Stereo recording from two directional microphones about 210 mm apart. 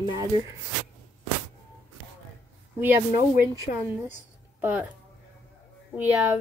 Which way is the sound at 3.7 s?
45° left (ahead or behind).